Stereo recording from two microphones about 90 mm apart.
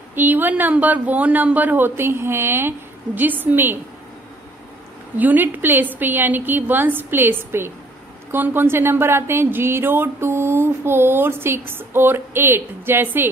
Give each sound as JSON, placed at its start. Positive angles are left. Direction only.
{"t": 0.1, "sound": "speech", "side_deg": -20}
{"t": 5.1, "sound": "speech", "side_deg": -20}